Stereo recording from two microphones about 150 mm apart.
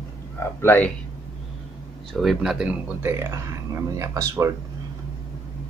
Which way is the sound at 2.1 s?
Centre (ahead or behind).